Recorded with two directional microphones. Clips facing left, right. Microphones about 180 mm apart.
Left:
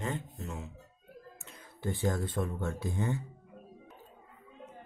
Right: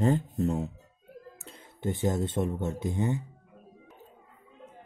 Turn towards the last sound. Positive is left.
turn(degrees=-20)  # may be behind; listen again after turning